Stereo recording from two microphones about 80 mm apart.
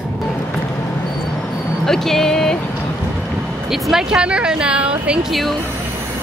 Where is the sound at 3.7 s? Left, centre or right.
Centre.